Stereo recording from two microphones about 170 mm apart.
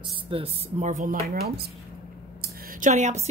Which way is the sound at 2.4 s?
50° right (ahead or behind).